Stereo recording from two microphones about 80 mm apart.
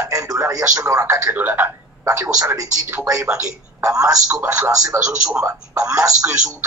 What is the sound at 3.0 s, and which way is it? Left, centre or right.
Speech, right.